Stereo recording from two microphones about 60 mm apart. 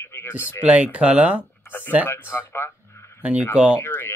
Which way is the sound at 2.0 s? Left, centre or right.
Left.